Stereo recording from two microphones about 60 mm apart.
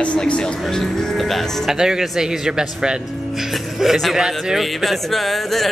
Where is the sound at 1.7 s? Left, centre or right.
Centre.